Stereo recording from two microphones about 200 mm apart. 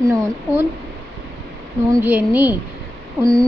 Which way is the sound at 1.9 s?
10° right (ahead or behind).